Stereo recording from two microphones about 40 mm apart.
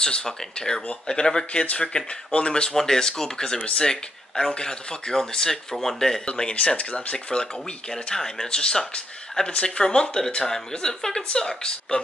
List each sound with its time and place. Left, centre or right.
0.0 s speech: centre
2.7 s speech: centre
6.8 s speech: left
7.3 s speech: centre